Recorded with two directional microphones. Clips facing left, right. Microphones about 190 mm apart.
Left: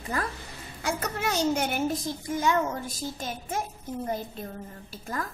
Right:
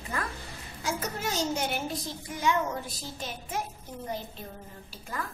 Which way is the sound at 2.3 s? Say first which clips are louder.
Left 2 dB; 45° left (ahead or behind).